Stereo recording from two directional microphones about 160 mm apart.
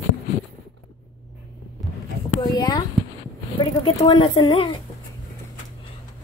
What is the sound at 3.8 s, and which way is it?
Speech, 30° left (ahead or behind).